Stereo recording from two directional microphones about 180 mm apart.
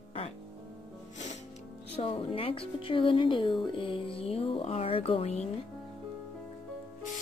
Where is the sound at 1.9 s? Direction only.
30° left (ahead or behind).